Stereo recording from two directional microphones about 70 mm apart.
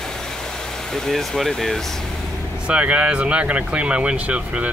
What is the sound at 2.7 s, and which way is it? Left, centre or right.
Speech, centre.